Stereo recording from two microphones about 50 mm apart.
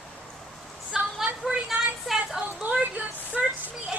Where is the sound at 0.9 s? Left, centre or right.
Centre.